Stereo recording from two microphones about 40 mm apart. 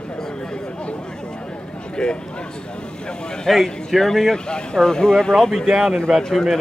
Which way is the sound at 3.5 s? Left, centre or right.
Centre.